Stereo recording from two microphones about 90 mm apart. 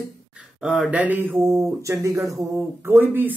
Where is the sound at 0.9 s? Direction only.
15° right (ahead or behind); by 2.4 s 35° right (ahead or behind).